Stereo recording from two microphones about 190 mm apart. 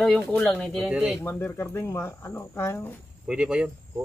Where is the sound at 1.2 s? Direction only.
15° left (ahead or behind).